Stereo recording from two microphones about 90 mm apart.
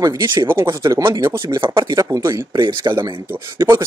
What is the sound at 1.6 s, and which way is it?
Speech, 60° right (ahead or behind).